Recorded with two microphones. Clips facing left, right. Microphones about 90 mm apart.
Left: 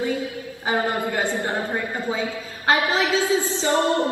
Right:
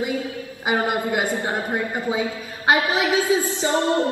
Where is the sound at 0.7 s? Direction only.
20° right (ahead or behind).